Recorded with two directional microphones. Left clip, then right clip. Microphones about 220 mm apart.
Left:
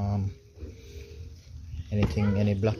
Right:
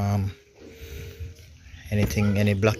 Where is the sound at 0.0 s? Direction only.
10° right (ahead or behind).